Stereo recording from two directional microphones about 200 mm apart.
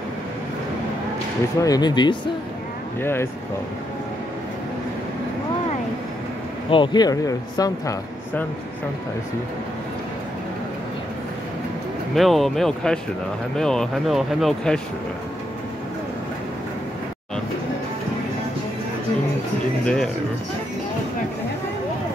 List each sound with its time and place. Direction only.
1.6 s speech: 20° left (ahead or behind)
3.0 s speech: 10° left (ahead or behind)
6.7 s speech: 20° left (ahead or behind)
12.2 s speech: centre (ahead or behind)
19.8 s speech: 5° left (ahead or behind)